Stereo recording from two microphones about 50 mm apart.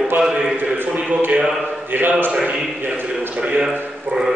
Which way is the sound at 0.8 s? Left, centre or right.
Right.